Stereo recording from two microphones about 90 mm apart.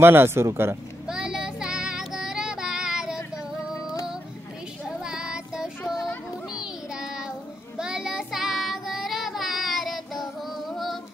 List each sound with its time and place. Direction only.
0.0 s speech: 25° right (ahead or behind)
1.0 s child singing: 10° right (ahead or behind)
4.8 s child singing: 10° right (ahead or behind)